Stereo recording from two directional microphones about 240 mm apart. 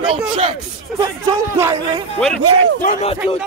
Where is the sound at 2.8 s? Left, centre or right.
Left.